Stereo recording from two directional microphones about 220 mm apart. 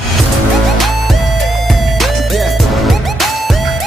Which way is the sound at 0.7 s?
Centre (ahead or behind).